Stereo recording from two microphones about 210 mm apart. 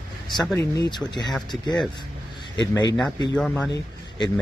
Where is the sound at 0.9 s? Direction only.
20° left (ahead or behind).